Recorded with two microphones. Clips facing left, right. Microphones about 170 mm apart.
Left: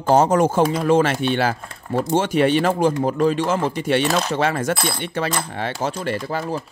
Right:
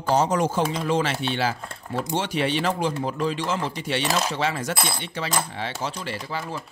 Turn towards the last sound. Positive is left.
turn(degrees=45)  # may be behind; listen again after turning